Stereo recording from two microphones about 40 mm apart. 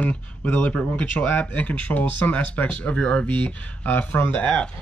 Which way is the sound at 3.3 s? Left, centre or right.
Left.